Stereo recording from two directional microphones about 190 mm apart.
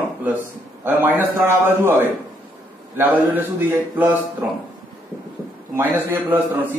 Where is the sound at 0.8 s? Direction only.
10° right (ahead or behind).